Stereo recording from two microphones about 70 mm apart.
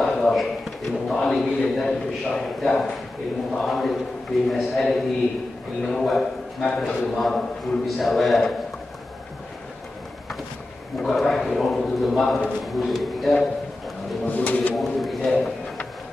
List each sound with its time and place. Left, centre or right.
0.0 s a man's voice: centre
11.0 s a man's voice: centre
14.2 s pigeon: left
14.8 s a sound: centre